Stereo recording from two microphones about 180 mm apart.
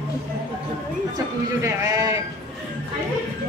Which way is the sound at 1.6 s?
20° right (ahead or behind).